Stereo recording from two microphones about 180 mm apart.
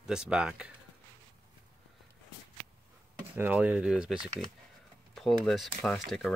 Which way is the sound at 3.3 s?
10° right (ahead or behind).